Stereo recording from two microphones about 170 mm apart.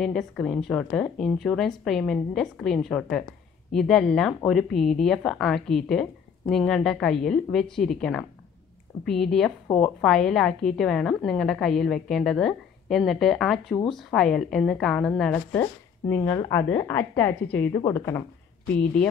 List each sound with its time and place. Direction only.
0.0 s a woman's voice: 5° left (ahead or behind)